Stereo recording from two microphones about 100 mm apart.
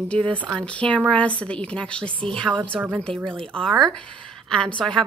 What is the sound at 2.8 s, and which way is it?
Speech, 20° right (ahead or behind).